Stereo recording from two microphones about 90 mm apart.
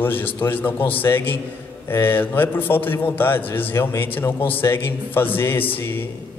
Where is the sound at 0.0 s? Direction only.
25° left (ahead or behind).